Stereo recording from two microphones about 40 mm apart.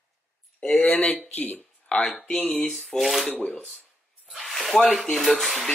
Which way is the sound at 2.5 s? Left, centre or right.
Centre.